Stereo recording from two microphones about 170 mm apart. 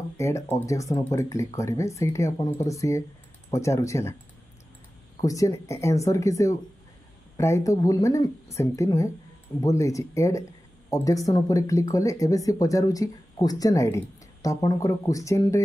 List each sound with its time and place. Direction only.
0.2 s speech: 20° left (ahead or behind)
5.2 s speech: 20° left (ahead or behind)